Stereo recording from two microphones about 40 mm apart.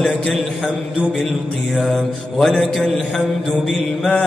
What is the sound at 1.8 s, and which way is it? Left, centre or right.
Mantra, centre.